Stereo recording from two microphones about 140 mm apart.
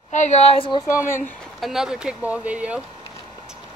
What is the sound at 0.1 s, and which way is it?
Speech, 55° left (ahead or behind).